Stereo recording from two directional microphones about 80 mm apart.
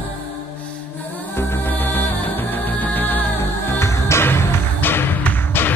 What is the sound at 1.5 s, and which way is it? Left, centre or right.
Music, left.